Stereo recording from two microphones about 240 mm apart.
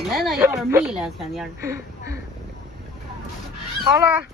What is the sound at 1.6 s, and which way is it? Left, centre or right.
Speech, centre.